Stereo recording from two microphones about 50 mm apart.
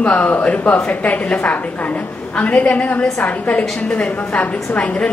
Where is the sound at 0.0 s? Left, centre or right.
Left.